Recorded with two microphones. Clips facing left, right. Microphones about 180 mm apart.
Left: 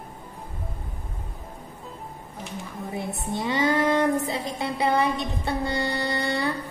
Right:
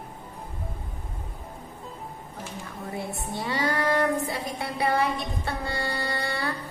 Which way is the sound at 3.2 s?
20° left (ahead or behind).